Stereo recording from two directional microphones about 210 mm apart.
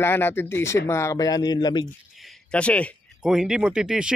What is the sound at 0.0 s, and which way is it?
Speech, 10° left (ahead or behind).